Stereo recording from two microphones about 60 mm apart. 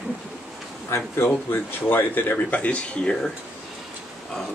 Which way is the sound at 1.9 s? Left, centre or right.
Left.